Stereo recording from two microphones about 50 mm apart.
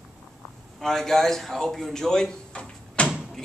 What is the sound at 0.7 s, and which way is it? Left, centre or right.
Speech, centre.